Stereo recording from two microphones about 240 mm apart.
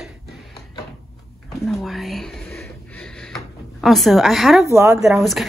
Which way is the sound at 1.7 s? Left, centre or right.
Centre.